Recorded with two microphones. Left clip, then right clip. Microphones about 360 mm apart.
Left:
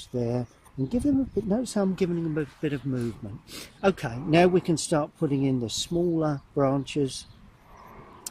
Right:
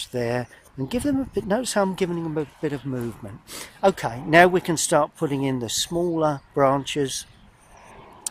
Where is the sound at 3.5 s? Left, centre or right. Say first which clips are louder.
Right 5 dB; centre.